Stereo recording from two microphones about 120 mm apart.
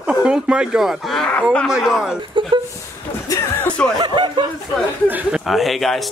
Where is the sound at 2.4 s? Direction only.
40° right (ahead or behind).